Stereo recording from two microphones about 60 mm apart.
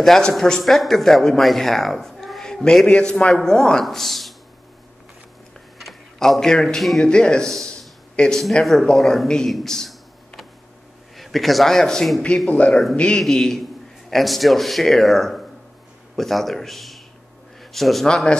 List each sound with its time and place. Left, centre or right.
0.0 s speech: centre
5.8 s a man's voice: centre
7.5 s a sound: centre
8.8 s a man's voice: centre
12.4 s speech: left
13.2 s speech: centre
17.6 s a sound: centre
18.0 s speech: centre